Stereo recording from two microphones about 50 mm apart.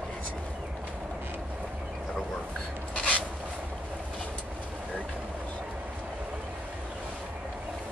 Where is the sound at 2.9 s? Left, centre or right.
Left.